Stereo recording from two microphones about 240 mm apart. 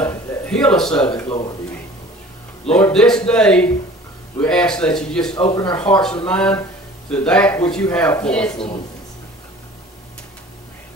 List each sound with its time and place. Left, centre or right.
0.0 s a sound: centre
1.2 s a man's voice: centre
2.7 s a man's voice: centre
5.4 s speech: left
6.2 s a man's voice: centre